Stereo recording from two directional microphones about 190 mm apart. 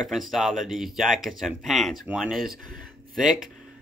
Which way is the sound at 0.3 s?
Centre (ahead or behind).